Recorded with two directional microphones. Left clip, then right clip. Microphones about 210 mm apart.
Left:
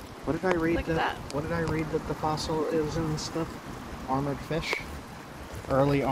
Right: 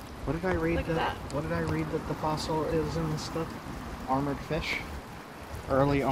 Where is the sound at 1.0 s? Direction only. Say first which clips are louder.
Left 2 dB; 10° left (ahead or behind).